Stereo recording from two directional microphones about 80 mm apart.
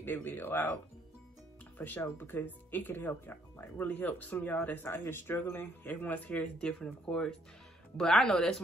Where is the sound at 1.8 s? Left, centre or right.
Left.